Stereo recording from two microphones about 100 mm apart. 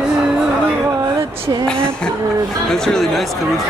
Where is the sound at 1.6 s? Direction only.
10° left (ahead or behind).